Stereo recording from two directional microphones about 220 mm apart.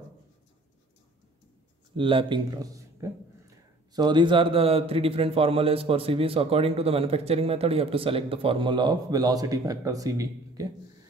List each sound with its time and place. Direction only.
2.0 s a man's voice: 25° right (ahead or behind)